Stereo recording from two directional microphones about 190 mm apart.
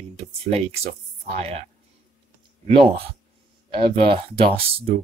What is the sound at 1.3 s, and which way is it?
Speech, 35° right (ahead or behind).